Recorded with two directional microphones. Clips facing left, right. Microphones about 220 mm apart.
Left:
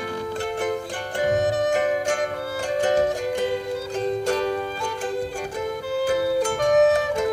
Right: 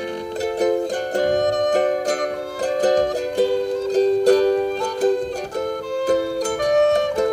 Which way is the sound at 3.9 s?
35° right (ahead or behind).